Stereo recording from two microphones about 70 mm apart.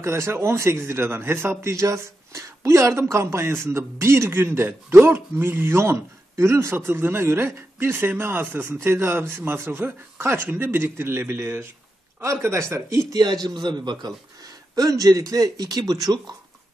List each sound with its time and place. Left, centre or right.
0.0 s a man's voice: right
13.1 s a man's voice: right